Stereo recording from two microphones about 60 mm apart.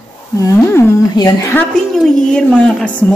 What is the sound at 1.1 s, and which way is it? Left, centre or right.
Speech, left.